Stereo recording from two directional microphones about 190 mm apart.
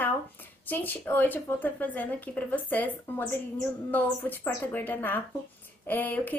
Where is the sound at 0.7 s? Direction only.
10° left (ahead or behind).